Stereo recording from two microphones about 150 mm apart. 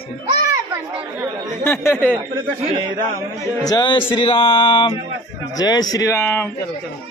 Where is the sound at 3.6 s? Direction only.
30° left (ahead or behind); by 6.5 s 15° left (ahead or behind).